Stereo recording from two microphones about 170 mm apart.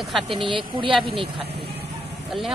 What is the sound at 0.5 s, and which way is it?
Speech, 30° right (ahead or behind).